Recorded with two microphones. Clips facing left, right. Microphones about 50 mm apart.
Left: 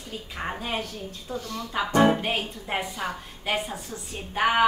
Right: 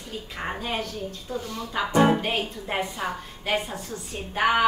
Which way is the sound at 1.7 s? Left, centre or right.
Centre.